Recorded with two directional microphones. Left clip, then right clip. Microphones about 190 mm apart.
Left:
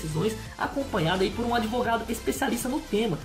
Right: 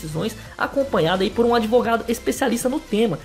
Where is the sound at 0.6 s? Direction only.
45° right (ahead or behind).